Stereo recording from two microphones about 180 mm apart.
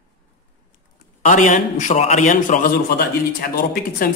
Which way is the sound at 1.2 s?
45° left (ahead or behind).